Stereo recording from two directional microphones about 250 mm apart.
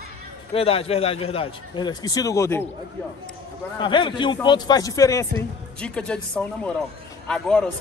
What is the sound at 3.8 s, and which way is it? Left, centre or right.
A woman's voice, centre.